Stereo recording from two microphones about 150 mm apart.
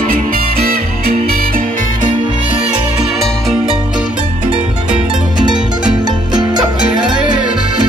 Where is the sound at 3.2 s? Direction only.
Centre (ahead or behind).